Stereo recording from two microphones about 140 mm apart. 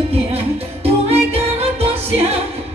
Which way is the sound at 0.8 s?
45° right (ahead or behind).